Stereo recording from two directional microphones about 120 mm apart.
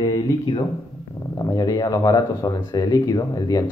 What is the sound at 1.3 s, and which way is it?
Speech, 30° left (ahead or behind).